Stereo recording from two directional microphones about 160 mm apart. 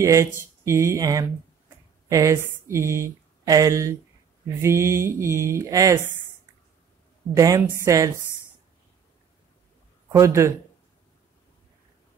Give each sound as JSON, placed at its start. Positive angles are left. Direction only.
{"t": 0.0, "sound": "speech", "side_deg": -20}
{"t": 7.3, "sound": "a woman's voice", "side_deg": -20}
{"t": 10.1, "sound": "a woman's voice", "side_deg": -20}